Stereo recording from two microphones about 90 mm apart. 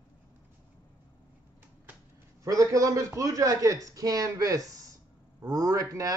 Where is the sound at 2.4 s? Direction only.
40° right (ahead or behind).